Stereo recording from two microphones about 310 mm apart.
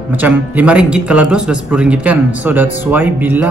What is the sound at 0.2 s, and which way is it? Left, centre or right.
Speech, centre.